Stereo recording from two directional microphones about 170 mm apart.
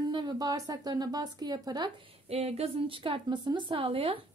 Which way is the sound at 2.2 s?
35° right (ahead or behind).